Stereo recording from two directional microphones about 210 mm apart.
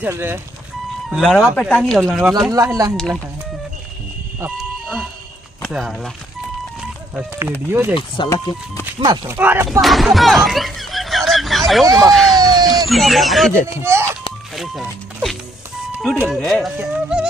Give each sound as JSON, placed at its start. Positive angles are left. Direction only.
{"t": 0.0, "sound": "speech", "side_deg": -10}
{"t": 1.1, "sound": "speech", "side_deg": 5}
{"t": 2.5, "sound": "speech", "side_deg": -15}
{"t": 5.6, "sound": "speech", "side_deg": 0}
{"t": 7.2, "sound": "speech", "side_deg": -10}
{"t": 7.9, "sound": "speech", "side_deg": 20}
{"t": 9.0, "sound": "speech", "side_deg": -20}
{"t": 13.8, "sound": "speech", "side_deg": -10}
{"t": 14.5, "sound": "speech", "side_deg": 0}